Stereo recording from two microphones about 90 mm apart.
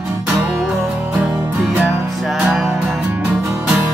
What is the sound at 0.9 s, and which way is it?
Music, 20° right (ahead or behind).